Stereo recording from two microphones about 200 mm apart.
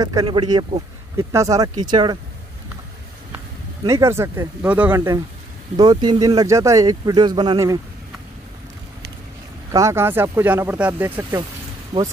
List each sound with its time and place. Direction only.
0.0 s speech: 20° right (ahead or behind)
3.8 s speech: 15° right (ahead or behind)
9.7 s speech: 15° right (ahead or behind)
11.9 s speech: 35° right (ahead or behind)